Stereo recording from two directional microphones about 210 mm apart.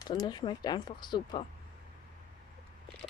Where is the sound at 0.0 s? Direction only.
20° left (ahead or behind).